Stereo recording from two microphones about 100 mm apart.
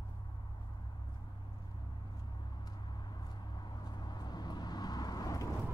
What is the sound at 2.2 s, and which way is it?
Vehicle, 45° left (ahead or behind).